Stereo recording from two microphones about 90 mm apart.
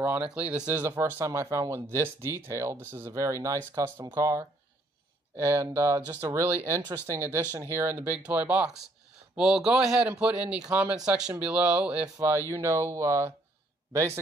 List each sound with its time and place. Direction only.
0.0 s speech: 20° right (ahead or behind)
2.8 s speech: 25° right (ahead or behind)
3.1 s speech: 35° right (ahead or behind)
5.3 s speech: 30° right (ahead or behind)
7.7 s speech: 25° right (ahead or behind)
12.4 s speech: 35° right (ahead or behind)